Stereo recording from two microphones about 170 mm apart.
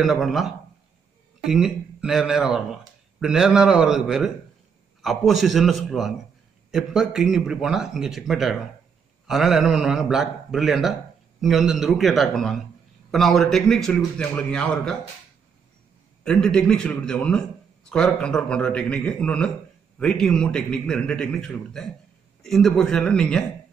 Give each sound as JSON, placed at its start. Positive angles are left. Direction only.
{"t": 0.0, "sound": "a man's voice", "side_deg": 0}
{"t": 16.3, "sound": "a man's voice", "side_deg": 5}